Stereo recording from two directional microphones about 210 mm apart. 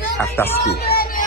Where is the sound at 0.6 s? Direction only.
50° left (ahead or behind).